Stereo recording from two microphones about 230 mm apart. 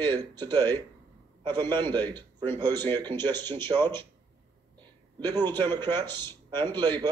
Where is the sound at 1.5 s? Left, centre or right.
Centre.